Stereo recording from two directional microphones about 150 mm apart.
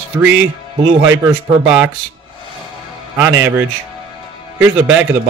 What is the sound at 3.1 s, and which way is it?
A man's voice, 20° right (ahead or behind).